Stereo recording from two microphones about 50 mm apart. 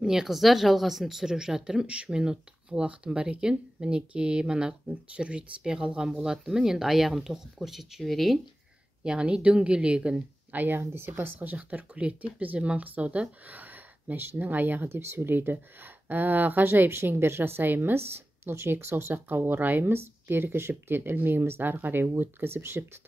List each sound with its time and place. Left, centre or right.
0.0 s speech: centre
9.0 s speech: right
10.5 s speech: right
10.8 s a woman's voice: right
11.7 s speech: right
14.9 s a woman's voice: right